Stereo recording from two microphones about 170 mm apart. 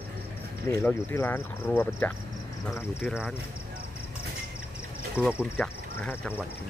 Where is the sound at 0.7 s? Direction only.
10° left (ahead or behind).